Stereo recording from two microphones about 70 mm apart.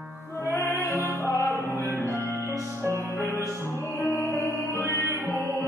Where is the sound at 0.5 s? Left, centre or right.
Left.